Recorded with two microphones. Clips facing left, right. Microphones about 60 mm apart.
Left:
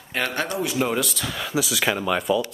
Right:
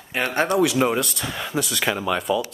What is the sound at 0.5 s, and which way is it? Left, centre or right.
Speech, right.